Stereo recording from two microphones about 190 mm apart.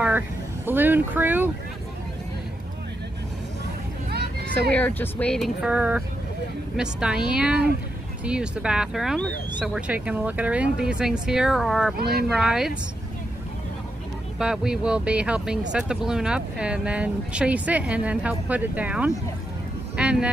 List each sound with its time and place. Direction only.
0.7 s speech: 10° right (ahead or behind)
4.7 s speech: 10° left (ahead or behind)
14.4 s speech: 5° right (ahead or behind)
20.0 s vehicle: 5° right (ahead or behind)